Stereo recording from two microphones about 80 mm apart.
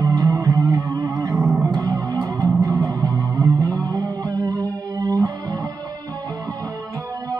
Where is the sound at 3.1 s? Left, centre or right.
Right.